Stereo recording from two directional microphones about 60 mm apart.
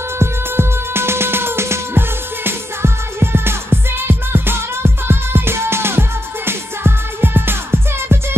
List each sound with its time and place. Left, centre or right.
0.2 s music: right